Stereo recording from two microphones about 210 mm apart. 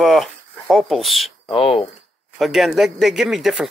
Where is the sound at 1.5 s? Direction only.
25° left (ahead or behind).